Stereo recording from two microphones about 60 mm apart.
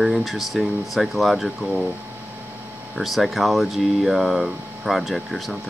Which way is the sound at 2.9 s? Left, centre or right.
Centre.